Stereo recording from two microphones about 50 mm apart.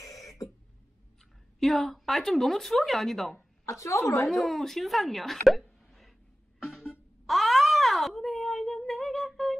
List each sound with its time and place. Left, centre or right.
1.6 s speech: centre
3.3 s a woman's voice: left
4.3 s speech: centre
5.9 s a sound: centre